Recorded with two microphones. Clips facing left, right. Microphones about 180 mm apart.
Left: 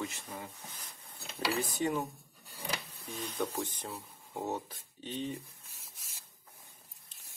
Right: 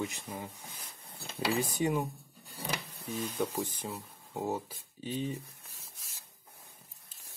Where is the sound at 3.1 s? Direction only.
5° right (ahead or behind).